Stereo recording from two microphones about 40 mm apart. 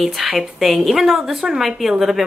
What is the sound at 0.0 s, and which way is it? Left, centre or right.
Speech, centre.